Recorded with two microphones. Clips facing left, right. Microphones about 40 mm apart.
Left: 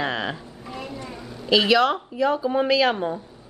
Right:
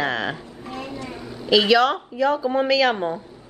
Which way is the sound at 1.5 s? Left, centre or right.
Centre.